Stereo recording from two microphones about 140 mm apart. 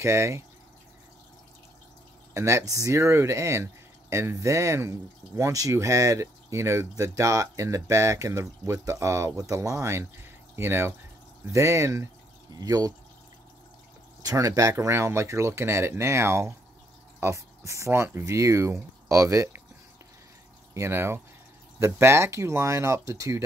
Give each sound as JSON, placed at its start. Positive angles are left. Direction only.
{"t": 0.0, "sound": "speech", "side_deg": -20}
{"t": 2.3, "sound": "speech", "side_deg": -20}
{"t": 14.2, "sound": "speech", "side_deg": -25}
{"t": 20.7, "sound": "speech", "side_deg": -20}